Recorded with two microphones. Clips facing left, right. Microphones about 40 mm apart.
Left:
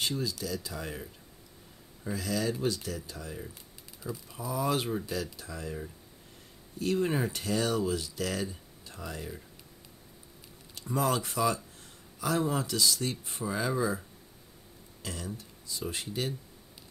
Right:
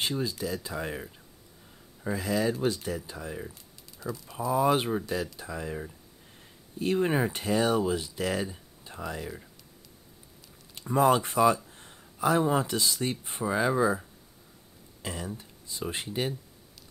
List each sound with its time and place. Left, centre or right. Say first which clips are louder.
0.0 s speech: right 3 dB; right
4.0 s speech: right 3 dB; centre
4.4 s speech: right 6 dB; right
10.7 s speech: right 6 dB; right